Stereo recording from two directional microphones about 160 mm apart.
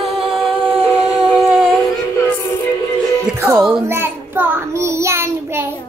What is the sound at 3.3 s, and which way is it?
Music, 10° right (ahead or behind).